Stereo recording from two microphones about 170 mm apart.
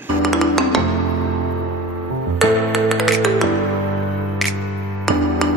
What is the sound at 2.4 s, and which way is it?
Music, centre (ahead or behind).